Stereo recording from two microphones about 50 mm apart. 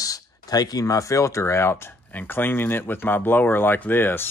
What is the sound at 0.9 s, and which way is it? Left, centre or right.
Speech, left.